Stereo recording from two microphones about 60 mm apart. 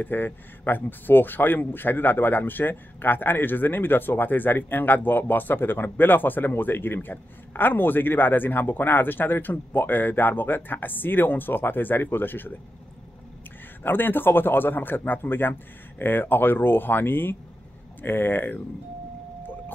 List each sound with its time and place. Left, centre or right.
0.0 s speech: left
13.8 s speech: left